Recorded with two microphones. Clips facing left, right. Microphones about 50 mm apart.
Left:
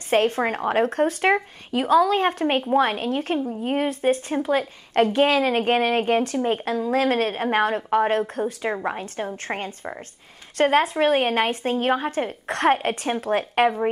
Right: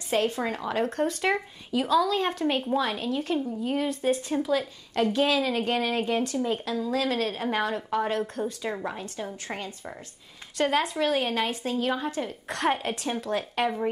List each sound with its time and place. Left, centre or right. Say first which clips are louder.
0.1 s a woman's voice: left 6 dB; left